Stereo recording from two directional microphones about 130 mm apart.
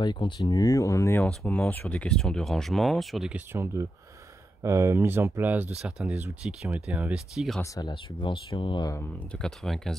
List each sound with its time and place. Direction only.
0.0 s speech: 35° left (ahead or behind)
1.2 s speech: 10° left (ahead or behind)
4.6 s speech: 20° right (ahead or behind)
7.6 s speech: 25° left (ahead or behind)
7.9 s speech: 40° left (ahead or behind)
9.4 s speech: 5° left (ahead or behind)